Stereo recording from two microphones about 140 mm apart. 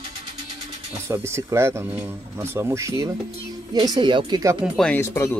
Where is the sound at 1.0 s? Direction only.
20° right (ahead or behind).